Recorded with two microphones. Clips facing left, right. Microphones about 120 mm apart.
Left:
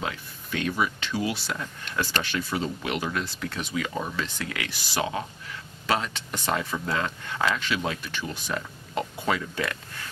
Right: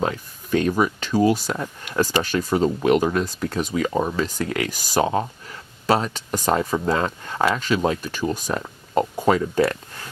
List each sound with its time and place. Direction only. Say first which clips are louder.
0.0 s speech: right 8 dB; 40° right (ahead or behind)